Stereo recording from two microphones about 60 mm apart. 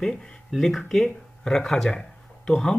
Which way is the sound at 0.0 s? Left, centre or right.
Centre.